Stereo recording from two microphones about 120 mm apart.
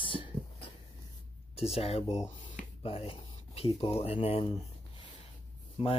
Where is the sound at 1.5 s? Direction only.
55° left (ahead or behind).